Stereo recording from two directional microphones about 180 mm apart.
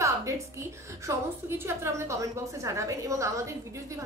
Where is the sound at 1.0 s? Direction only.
15° right (ahead or behind).